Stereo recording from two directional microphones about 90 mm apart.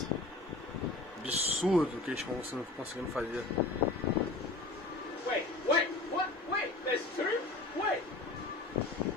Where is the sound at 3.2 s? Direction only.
15° right (ahead or behind).